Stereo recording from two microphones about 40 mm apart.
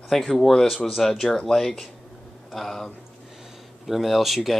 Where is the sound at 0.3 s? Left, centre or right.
Centre.